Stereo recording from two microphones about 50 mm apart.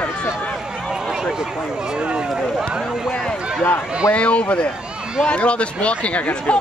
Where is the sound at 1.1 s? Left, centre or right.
Centre.